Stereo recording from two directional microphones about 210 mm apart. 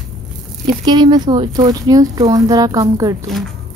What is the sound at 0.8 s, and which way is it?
Speech, 20° right (ahead or behind).